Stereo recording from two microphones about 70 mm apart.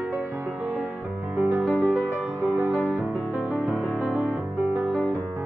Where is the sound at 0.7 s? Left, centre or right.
Centre.